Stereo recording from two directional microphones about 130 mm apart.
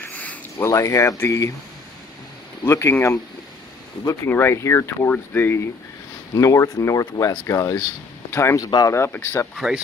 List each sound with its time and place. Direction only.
0.1 s a sound: 10° left (ahead or behind)
0.7 s speech: 25° left (ahead or behind)
2.6 s speech: 20° left (ahead or behind)
4.3 s speech: 20° left (ahead or behind)